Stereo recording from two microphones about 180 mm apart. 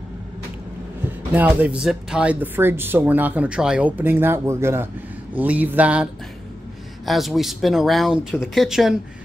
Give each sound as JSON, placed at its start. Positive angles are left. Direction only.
{"t": 1.3, "sound": "speech", "side_deg": -10}
{"t": 7.1, "sound": "speech", "side_deg": 0}